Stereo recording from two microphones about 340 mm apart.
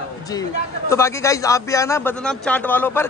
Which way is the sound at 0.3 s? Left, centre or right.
Centre.